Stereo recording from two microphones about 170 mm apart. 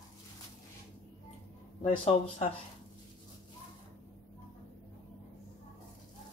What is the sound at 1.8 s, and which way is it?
Speech, 40° left (ahead or behind).